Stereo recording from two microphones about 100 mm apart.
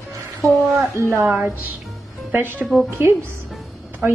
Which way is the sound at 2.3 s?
20° right (ahead or behind).